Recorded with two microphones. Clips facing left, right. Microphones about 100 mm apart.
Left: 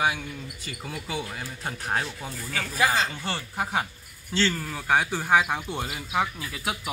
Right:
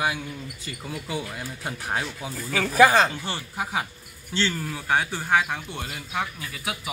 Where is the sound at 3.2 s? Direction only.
5° right (ahead or behind).